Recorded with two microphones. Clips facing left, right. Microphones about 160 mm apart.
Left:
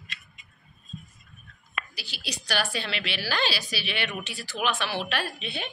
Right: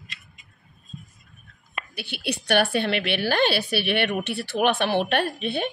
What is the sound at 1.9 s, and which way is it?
A woman's voice, 60° right (ahead or behind).